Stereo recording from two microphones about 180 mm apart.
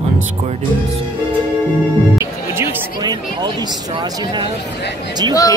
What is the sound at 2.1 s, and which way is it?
Speech, 15° right (ahead or behind).